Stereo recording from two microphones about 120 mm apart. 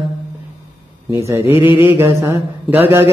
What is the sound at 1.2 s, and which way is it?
Mantra, 25° right (ahead or behind).